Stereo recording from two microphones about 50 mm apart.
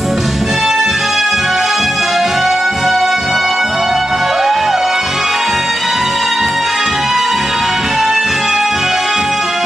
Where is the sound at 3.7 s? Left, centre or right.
Centre.